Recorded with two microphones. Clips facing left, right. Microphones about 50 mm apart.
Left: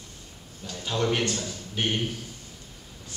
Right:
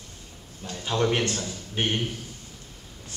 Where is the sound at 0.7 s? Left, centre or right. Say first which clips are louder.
Right 2 dB; centre.